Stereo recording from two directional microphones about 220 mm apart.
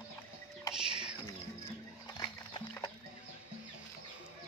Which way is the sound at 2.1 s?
20° left (ahead or behind).